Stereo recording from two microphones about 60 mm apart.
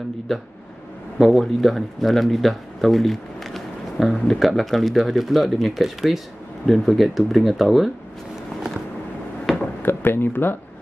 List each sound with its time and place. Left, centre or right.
0.3 s speech: centre
9.5 s a sound: centre
9.8 s speech: left